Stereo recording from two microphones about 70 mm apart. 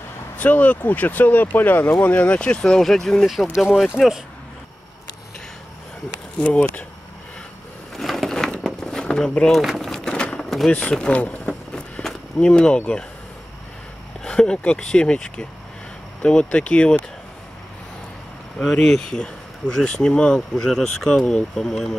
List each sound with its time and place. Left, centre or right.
0.4 s speech: left
2.6 s speech: centre
3.5 s speech: centre
7.9 s a sound: centre
10.7 s speech: centre
14.2 s speech: centre
18.6 s speech: centre